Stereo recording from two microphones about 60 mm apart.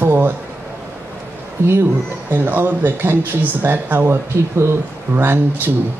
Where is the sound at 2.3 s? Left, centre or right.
Right.